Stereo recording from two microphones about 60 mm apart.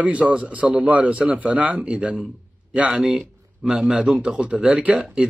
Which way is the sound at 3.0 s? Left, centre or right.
Centre.